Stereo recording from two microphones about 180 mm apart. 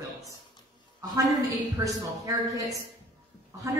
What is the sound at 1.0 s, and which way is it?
A woman's voice, 20° right (ahead or behind).